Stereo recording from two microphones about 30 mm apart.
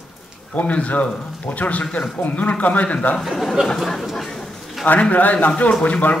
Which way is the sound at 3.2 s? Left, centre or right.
Centre.